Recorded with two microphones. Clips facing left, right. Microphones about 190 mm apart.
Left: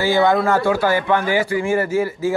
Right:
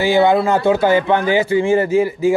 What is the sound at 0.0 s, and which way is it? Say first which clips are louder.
Speech: right 3 dB; 15° right (ahead or behind).